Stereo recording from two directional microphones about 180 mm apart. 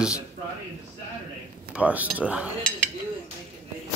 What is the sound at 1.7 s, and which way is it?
Speech, 10° right (ahead or behind).